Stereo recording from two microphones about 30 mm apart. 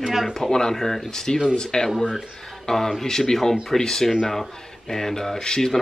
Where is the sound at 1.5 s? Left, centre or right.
Left.